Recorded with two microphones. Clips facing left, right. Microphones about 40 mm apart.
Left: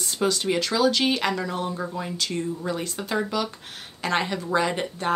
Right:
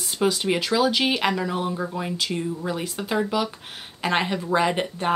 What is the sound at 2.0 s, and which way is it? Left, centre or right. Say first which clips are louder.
Speech: right 1 dB; centre.